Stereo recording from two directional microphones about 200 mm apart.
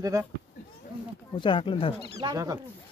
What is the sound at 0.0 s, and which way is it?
Speech, 15° right (ahead or behind).